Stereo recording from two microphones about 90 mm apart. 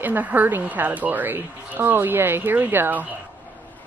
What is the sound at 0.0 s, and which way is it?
A woman's voice, 20° right (ahead or behind).